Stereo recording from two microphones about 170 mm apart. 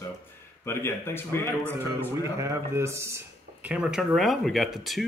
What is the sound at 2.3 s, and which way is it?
Speech, 15° right (ahead or behind).